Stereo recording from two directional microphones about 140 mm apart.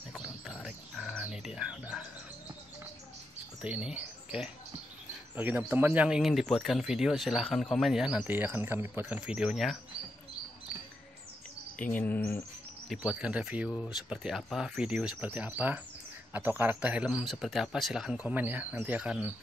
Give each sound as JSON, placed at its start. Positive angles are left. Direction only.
{"t": 0.1, "sound": "bird", "side_deg": -5}
{"t": 3.6, "sound": "speech", "side_deg": -10}
{"t": 11.8, "sound": "speech", "side_deg": 10}
{"t": 12.8, "sound": "speech", "side_deg": -5}